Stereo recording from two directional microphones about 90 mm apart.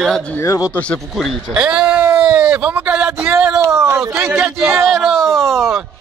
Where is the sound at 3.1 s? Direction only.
30° right (ahead or behind).